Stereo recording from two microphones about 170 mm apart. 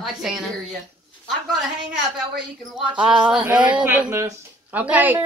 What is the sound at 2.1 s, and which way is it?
A woman's voice, 5° right (ahead or behind).